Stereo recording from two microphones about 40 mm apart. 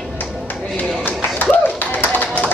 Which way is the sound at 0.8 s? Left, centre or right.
Left.